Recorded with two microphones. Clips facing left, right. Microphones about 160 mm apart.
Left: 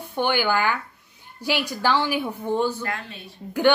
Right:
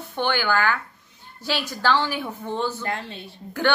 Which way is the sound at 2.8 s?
30° right (ahead or behind).